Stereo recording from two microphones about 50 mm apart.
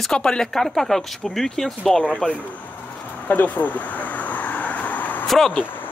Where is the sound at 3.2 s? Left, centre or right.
Left.